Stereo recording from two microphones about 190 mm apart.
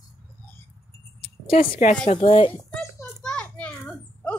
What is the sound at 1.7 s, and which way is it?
Speech, 40° left (ahead or behind).